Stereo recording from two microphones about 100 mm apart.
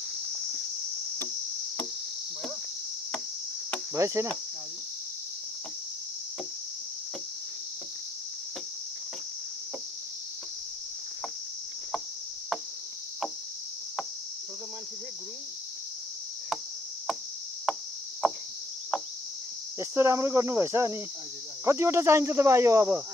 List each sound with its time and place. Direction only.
3.9 s speech: 30° right (ahead or behind)
18.2 s a sound: 5° right (ahead or behind)
19.8 s speech: 25° right (ahead or behind)